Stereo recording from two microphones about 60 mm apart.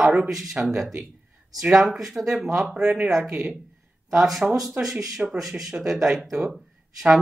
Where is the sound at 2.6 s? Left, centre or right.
Centre.